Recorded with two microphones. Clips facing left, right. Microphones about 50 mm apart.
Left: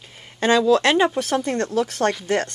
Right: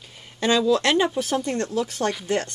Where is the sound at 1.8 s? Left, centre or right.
Left.